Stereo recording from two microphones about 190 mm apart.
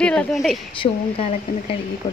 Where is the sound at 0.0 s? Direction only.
5° left (ahead or behind).